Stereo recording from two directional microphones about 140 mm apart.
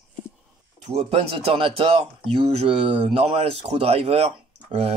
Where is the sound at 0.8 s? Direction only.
50° right (ahead or behind).